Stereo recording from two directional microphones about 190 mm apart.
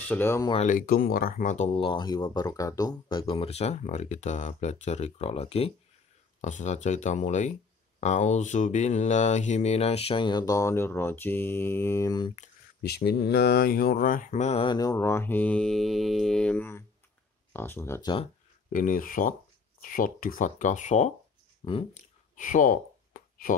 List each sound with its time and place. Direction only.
0.1 s speech: 15° left (ahead or behind)
0.5 s speech: 40° left (ahead or behind); by 12.4 s 20° left (ahead or behind)
12.8 s speech: 55° left (ahead or behind); by 18.1 s 15° left (ahead or behind)
18.7 s speech: 45° left (ahead or behind)
21.6 s speech: 25° left (ahead or behind)
22.3 s a sound: 45° left (ahead or behind)